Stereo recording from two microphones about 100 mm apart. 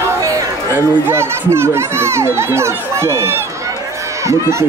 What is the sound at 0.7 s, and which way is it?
Speech, 25° right (ahead or behind).